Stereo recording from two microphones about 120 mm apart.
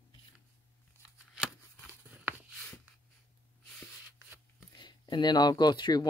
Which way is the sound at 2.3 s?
15° right (ahead or behind).